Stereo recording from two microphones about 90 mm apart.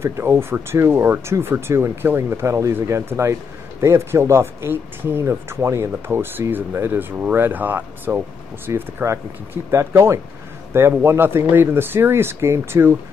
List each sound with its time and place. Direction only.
0.0 s speech: 30° right (ahead or behind)